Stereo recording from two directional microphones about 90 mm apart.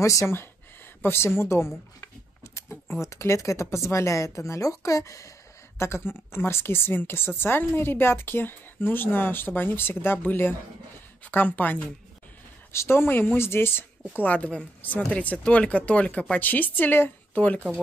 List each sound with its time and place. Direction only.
0.0 s speech: 35° left (ahead or behind); by 17.7 s 15° left (ahead or behind)